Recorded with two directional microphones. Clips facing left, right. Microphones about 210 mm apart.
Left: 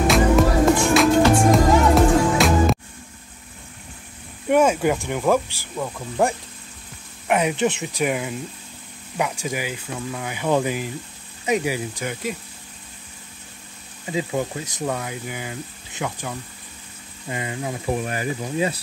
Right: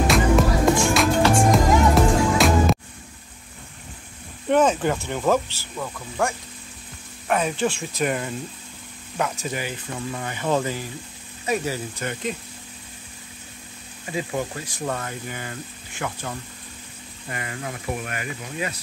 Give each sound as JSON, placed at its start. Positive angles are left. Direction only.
{"t": 0.0, "sound": "music", "side_deg": 0}
{"t": 4.5, "sound": "speech", "side_deg": 10}
{"t": 9.9, "sound": "speech", "side_deg": 0}
{"t": 10.3, "sound": "speech", "side_deg": 10}
{"t": 14.0, "sound": "speech", "side_deg": 20}
{"t": 17.3, "sound": "speech", "side_deg": 20}